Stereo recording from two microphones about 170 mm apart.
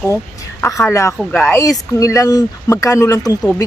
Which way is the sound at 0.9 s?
15° left (ahead or behind).